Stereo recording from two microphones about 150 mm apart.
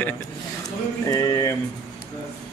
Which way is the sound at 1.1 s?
25° left (ahead or behind).